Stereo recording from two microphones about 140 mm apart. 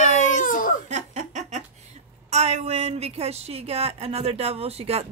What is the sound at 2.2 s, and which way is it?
A woman's voice, 50° right (ahead or behind).